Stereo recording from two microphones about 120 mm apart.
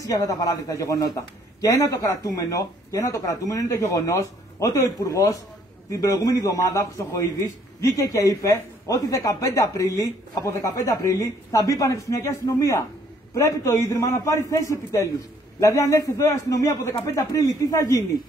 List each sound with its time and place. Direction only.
0.0 s a man's voice: 30° left (ahead or behind)